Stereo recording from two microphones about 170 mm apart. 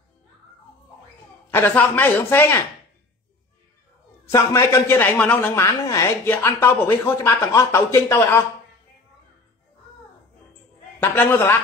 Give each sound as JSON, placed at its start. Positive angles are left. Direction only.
{"t": 1.5, "sound": "a man's voice", "side_deg": 10}
{"t": 4.3, "sound": "a man's voice", "side_deg": 15}
{"t": 11.0, "sound": "a man's voice", "side_deg": 15}